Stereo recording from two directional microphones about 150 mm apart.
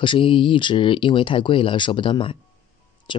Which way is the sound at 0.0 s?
35° left (ahead or behind).